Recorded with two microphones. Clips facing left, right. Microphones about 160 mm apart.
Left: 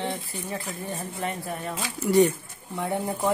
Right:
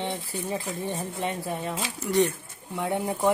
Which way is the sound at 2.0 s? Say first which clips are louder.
Left 4 dB; 10° left (ahead or behind).